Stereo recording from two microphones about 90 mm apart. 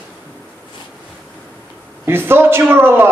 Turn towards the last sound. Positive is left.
turn(degrees=-25)  # may be behind; listen again after turning